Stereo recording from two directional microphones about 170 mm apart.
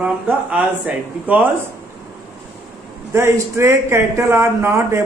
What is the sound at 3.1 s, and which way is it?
Speech, 15° right (ahead or behind).